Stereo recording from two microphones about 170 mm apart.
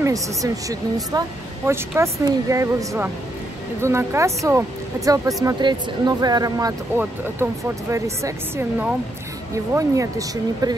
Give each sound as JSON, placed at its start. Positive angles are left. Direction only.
{"t": 0.0, "sound": "speech", "side_deg": -20}